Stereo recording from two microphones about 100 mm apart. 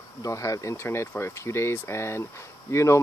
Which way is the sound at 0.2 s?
35° left (ahead or behind).